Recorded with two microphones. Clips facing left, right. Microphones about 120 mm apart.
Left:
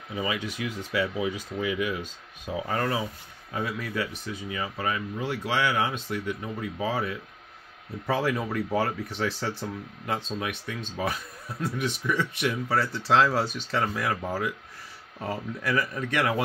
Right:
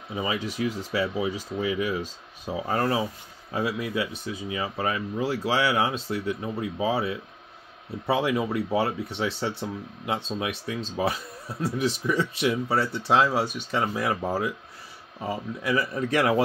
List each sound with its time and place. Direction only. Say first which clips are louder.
0.1 s speech: right 1 dB; 25° right (ahead or behind)
0.4 s speech: right 4 dB; 35° right (ahead or behind)
3.8 s speech: right 3 dB; 15° right (ahead or behind); by 6.6 s 30° right (ahead or behind)
6.6 s speech: right 3 dB; 20° right (ahead or behind)
15.1 s speech: right 1 dB; 10° right (ahead or behind)
15.8 s speech: right 5 dB; 30° right (ahead or behind)